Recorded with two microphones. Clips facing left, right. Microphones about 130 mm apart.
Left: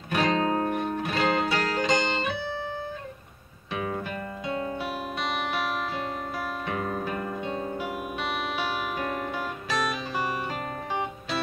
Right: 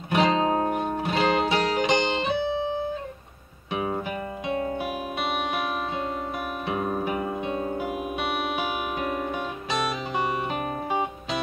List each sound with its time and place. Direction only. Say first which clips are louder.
0.1 s music: right 3 dB; 20° right (ahead or behind)
6.6 s music: right 5 dB; 15° right (ahead or behind)